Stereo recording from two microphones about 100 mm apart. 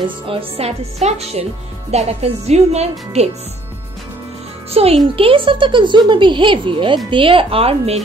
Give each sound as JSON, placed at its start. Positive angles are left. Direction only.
{"t": 0.0, "sound": "speech", "side_deg": -65}
{"t": 4.6, "sound": "a child's voice", "side_deg": -80}
{"t": 5.0, "sound": "speech", "side_deg": -65}